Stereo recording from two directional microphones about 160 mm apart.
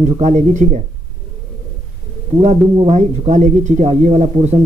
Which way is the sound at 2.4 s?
45° right (ahead or behind).